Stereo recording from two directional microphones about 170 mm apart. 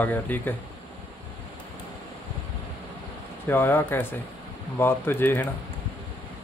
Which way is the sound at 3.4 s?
15° left (ahead or behind).